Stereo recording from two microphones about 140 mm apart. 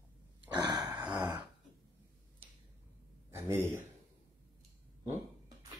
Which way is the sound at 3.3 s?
20° right (ahead or behind).